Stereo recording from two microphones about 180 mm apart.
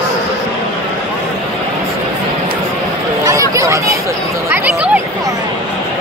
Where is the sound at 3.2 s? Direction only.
20° right (ahead or behind).